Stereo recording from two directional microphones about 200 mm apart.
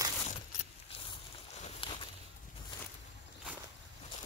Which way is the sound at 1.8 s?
25° left (ahead or behind).